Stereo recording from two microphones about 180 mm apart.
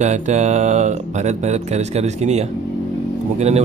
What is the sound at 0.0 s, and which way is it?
Speech, 40° right (ahead or behind).